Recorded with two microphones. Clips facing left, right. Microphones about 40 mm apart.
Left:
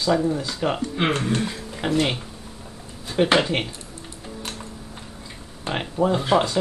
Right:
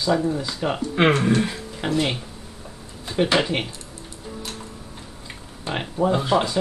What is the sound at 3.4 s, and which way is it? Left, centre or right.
Speech, centre.